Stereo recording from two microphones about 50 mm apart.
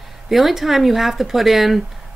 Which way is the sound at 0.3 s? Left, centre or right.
Centre.